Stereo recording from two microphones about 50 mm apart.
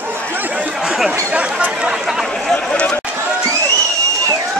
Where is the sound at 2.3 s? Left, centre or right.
Centre.